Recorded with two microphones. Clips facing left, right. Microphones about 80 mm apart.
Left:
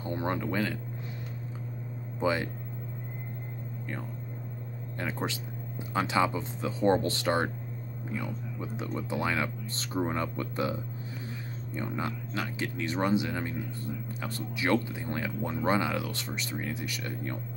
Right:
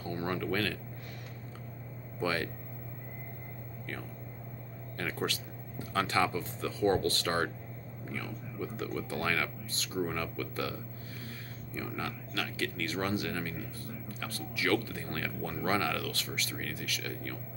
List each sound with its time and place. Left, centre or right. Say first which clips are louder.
0.0 s a sound: left 3 dB; left
2.1 s speech: left 4 dB; centre
4.9 s speech: left 1 dB; left
9.7 s speech: left 3 dB; left